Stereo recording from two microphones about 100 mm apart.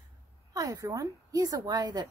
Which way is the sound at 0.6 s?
35° right (ahead or behind).